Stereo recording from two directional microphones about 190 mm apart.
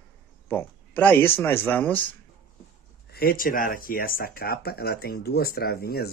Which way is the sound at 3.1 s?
50° left (ahead or behind).